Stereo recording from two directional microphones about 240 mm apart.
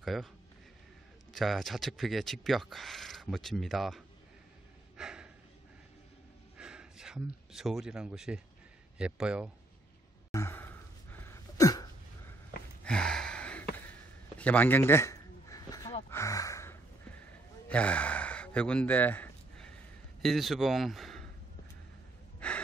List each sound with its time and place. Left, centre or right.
0.0 s speech: centre
1.3 s speech: centre
4.9 s breathing: centre
6.6 s speech: centre
10.3 s sneeze: centre
12.8 s a sound: centre
17.6 s gasp: centre
20.2 s a man's voice: centre
22.4 s gasp: centre